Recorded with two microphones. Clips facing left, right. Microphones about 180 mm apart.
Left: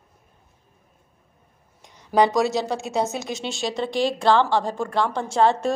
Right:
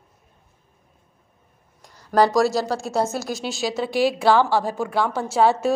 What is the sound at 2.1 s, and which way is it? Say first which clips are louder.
A woman's voice: right 1 dB; centre (ahead or behind).